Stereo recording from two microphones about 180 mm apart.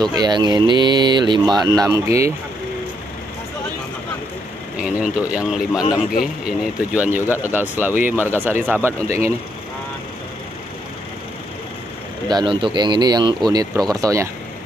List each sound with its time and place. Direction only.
0.0 s speech: 25° right (ahead or behind)
4.8 s speech: 5° right (ahead or behind)
9.0 s speech: 40° left (ahead or behind)
12.3 s speech: 25° right (ahead or behind)